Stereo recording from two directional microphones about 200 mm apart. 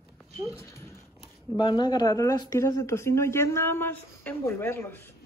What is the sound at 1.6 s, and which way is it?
Speech, 20° left (ahead or behind).